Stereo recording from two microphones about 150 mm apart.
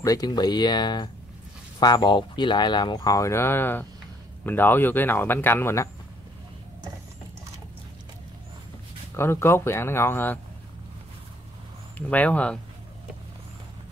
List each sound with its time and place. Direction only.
0.0 s speech: 25° left (ahead or behind)
9.1 s speech: 15° left (ahead or behind)
12.1 s speech: 10° left (ahead or behind)